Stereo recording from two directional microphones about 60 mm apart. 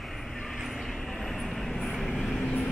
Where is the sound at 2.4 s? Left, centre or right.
Left.